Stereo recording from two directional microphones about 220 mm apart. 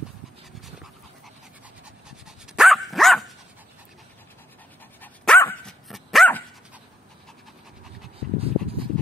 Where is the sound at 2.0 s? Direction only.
Centre (ahead or behind).